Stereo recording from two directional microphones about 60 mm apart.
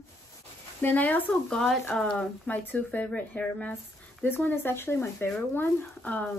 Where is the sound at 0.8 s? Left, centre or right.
Left.